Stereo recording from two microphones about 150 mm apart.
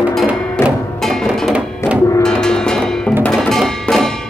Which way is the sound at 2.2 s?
5° left (ahead or behind).